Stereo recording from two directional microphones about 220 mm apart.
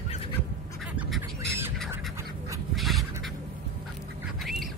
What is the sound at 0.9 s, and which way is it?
Squawk, 5° right (ahead or behind).